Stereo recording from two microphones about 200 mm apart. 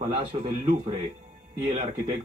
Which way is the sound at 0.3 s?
35° right (ahead or behind).